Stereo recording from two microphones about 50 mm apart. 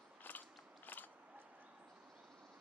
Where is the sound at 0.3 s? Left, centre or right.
Left.